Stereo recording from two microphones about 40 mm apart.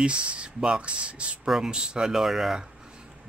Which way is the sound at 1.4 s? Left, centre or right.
Centre.